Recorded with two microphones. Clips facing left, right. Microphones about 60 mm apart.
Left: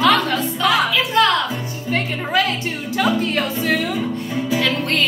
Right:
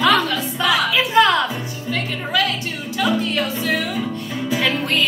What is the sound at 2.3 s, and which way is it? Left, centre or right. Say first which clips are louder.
Music: left 1 dB; left.